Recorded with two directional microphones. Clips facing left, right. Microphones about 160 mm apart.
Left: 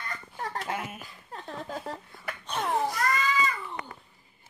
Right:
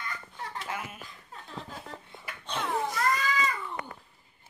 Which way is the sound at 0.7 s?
30° left (ahead or behind).